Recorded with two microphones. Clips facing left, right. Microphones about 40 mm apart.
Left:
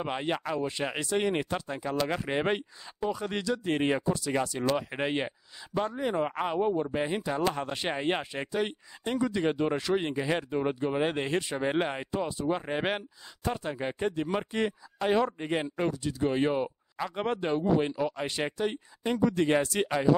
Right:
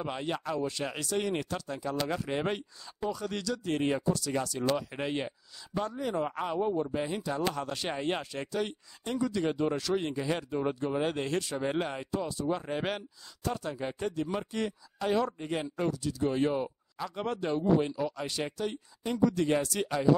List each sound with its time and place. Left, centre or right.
0.0 s speech: left